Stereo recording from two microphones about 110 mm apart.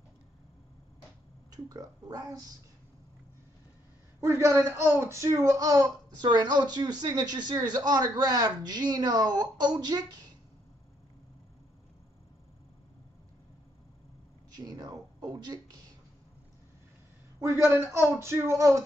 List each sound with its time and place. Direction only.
1.5 s speech: 35° right (ahead or behind)
4.2 s speech: 25° right (ahead or behind)
14.5 s speech: 40° right (ahead or behind)
17.4 s a man's voice: 25° right (ahead or behind)